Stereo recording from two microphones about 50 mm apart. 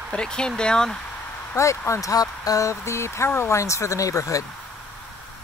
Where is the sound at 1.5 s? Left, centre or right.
Left.